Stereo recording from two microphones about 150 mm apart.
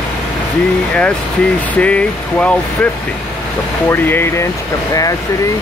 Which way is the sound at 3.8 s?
15° left (ahead or behind).